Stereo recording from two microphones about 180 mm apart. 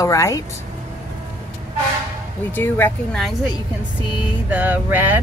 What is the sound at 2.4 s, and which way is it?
Speech, 10° left (ahead or behind).